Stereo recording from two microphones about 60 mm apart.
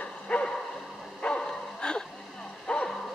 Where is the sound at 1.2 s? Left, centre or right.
Centre.